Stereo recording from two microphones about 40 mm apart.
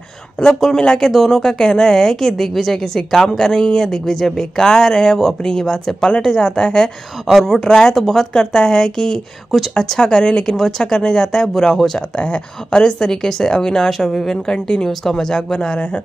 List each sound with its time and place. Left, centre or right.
0.7 s speech: centre
12.2 s speech: left
12.8 s speech: centre
13.8 s speech: centre